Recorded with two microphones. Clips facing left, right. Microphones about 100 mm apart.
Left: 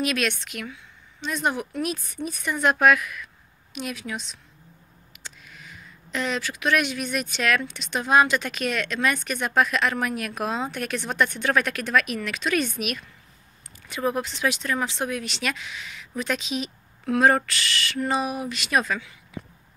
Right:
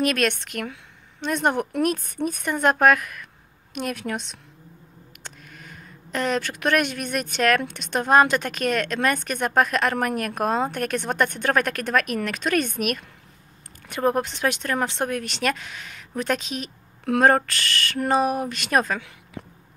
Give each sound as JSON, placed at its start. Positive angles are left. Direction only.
{"t": 0.0, "sound": "speech", "side_deg": -50}
{"t": 3.7, "sound": "a woman's voice", "side_deg": -55}
{"t": 5.2, "sound": "speech", "side_deg": -50}